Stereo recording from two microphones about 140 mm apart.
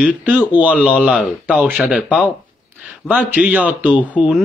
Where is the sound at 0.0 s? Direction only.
10° right (ahead or behind).